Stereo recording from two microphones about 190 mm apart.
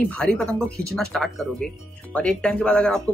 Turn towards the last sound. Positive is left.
turn(degrees=5)  # may be behind; listen again after turning